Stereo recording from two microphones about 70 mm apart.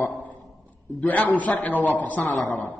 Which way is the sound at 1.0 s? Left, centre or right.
Left.